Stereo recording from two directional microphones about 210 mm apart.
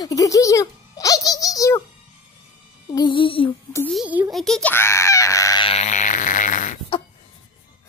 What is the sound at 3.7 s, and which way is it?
Speech, 5° left (ahead or behind).